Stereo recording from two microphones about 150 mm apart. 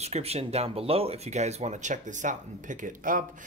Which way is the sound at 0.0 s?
45° right (ahead or behind).